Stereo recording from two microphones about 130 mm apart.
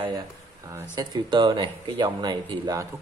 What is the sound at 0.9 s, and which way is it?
Speech, 35° right (ahead or behind).